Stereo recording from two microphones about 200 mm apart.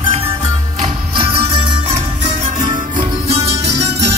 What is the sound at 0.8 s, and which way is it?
Music, 25° right (ahead or behind).